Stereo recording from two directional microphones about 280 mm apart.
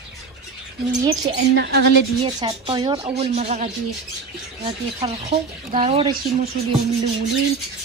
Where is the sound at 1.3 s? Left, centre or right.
Right.